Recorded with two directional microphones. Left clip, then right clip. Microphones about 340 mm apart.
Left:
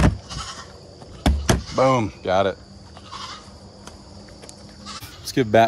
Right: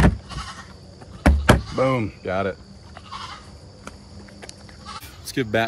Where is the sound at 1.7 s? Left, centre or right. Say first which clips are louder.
Left 3 dB; centre.